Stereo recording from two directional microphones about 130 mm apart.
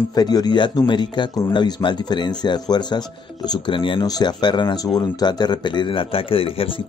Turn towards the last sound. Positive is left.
turn(degrees=45)  # may be behind; listen again after turning